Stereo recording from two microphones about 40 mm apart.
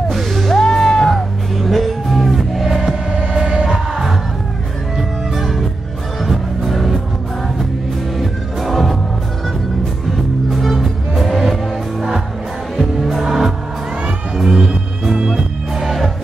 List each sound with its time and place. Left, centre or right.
0.1 s music: centre
0.6 s music: centre
1.6 s music: centre
5.3 s music: centre
8.2 s music: centre
10.1 s music: centre
13.0 s music: centre
14.3 s cat: centre
15.2 s music: centre